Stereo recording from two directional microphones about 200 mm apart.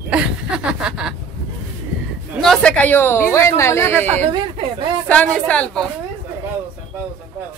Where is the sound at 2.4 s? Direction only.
5° left (ahead or behind).